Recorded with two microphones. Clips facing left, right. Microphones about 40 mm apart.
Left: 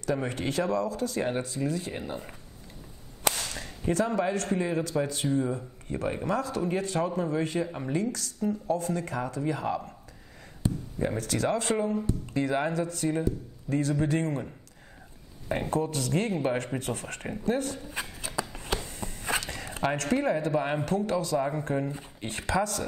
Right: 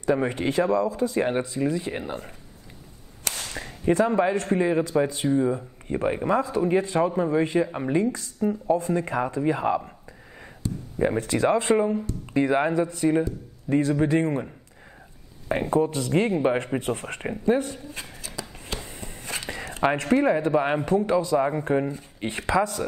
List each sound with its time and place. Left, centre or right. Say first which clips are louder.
0.0 s a man's voice: right 6 dB; right
3.5 s a man's voice: right 6 dB; right
11.0 s a man's voice: right 7 dB; right
15.6 s a man's voice: right 7 dB; right
18.4 s a sound: left 4 dB; centre
18.8 s a sound: even; right
19.4 s a man's voice: right 6 dB; right